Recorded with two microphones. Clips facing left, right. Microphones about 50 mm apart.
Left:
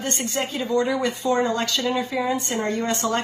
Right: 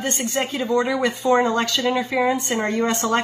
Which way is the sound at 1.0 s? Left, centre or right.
Right.